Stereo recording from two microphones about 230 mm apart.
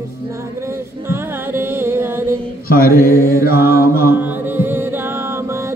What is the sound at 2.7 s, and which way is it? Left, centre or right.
Mantra, left.